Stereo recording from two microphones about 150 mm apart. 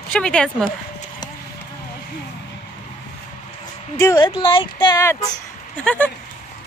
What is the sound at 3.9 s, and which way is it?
Speech, 25° left (ahead or behind).